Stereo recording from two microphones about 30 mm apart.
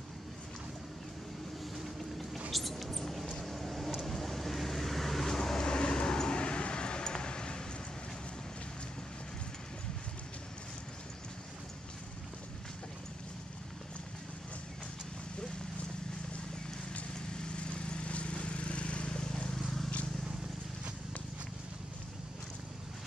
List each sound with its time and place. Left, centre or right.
2.5 s mouse: centre
4.0 s vehicle: centre; by 7.6 s left
17.1 s lawn mower: left